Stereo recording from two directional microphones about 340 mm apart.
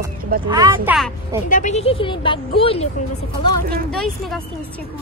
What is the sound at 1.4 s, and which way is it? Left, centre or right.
Speech, left.